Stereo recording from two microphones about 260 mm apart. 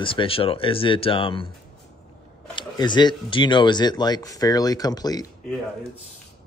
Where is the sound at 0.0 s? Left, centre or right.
Centre.